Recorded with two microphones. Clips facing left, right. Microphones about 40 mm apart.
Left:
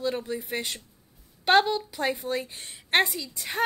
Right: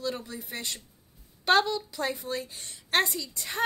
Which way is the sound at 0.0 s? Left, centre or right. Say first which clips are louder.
Left 5 dB; left.